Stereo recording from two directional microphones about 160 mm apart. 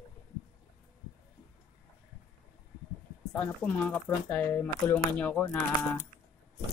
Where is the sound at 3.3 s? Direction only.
5° left (ahead or behind).